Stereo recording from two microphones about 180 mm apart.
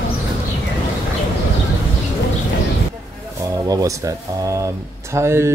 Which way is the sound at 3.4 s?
20° right (ahead or behind).